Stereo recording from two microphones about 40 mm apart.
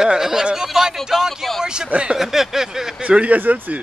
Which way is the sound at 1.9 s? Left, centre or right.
Right.